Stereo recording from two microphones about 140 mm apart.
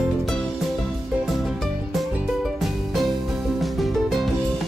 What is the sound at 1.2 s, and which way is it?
Music, centre (ahead or behind).